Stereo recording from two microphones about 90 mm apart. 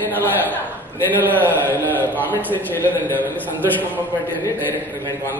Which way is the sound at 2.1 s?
20° left (ahead or behind).